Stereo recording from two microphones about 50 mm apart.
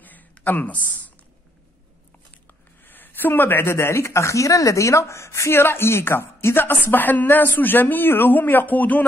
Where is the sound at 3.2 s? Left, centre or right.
Left.